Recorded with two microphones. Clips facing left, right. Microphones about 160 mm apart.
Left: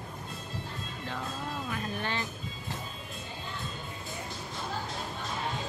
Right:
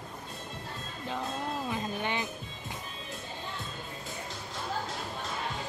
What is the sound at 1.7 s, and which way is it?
Music, 20° right (ahead or behind).